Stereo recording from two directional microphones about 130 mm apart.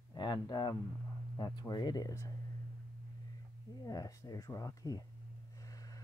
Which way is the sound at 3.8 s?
25° left (ahead or behind).